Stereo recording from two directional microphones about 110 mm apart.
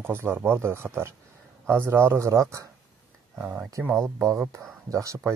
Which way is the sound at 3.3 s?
15° right (ahead or behind).